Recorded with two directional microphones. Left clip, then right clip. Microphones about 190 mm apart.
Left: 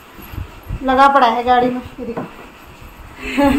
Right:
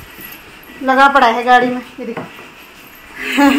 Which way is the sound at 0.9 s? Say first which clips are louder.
Right 1 dB; 40° right (ahead or behind).